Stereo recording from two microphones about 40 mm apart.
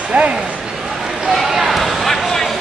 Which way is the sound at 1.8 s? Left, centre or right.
Centre.